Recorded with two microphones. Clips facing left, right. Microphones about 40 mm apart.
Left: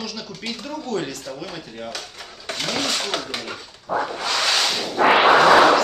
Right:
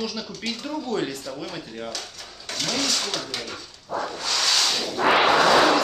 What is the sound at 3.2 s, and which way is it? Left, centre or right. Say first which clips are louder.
Speech: left 2 dB; centre.